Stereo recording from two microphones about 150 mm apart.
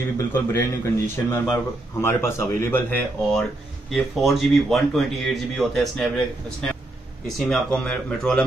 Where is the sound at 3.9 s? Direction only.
Centre (ahead or behind).